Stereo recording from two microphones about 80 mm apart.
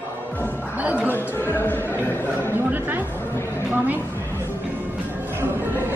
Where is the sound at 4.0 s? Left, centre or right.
Left.